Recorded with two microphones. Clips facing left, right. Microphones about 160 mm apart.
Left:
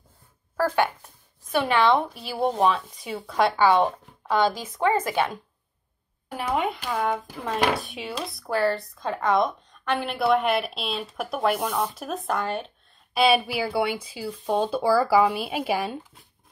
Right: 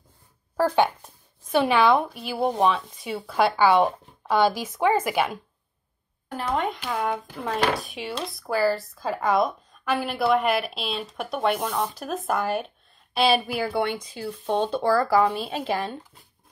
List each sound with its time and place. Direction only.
0.6 s a sound: 20° right (ahead or behind)
1.9 s speech: centre (ahead or behind)
6.3 s speech: 10° left (ahead or behind)